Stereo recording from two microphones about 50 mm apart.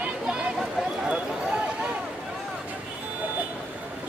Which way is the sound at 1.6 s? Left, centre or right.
Right.